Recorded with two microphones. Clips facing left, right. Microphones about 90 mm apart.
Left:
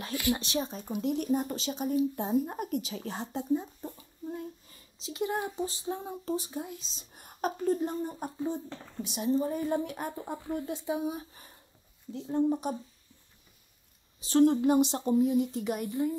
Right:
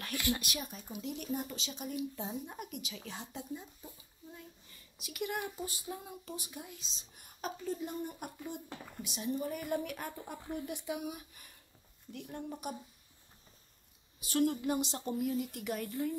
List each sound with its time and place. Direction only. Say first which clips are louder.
0.0 s speech: left 5 dB; 20° left (ahead or behind)
0.5 s speech: left 9 dB; 30° left (ahead or behind)
0.8 s speech: left 10 dB; 50° left (ahead or behind)
3.9 s a sound: left 13 dB; 45° left (ahead or behind)
4.6 s speech: left 8 dB; 25° left (ahead or behind)
6.9 s speech: left 4 dB; 45° left (ahead or behind); by 8.6 s 25° left (ahead or behind)
8.6 s speech: left 5 dB; 10° right (ahead or behind)
9.0 s speech: left 8 dB; 35° left (ahead or behind)
14.2 s speech: left 8 dB; 30° left (ahead or behind)